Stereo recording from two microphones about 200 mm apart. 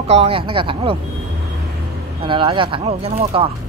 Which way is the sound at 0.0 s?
30° right (ahead or behind).